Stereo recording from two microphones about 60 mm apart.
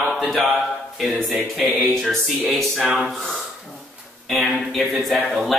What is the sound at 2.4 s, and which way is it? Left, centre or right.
Speech, centre.